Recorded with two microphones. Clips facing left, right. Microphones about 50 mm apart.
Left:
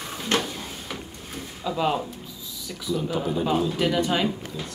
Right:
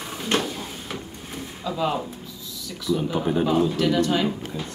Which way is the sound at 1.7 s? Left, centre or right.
Centre.